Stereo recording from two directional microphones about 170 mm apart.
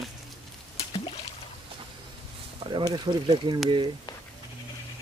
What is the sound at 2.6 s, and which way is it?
Speech, 25° right (ahead or behind).